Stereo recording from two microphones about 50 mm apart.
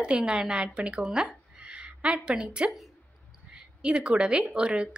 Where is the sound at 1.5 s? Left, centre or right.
Right.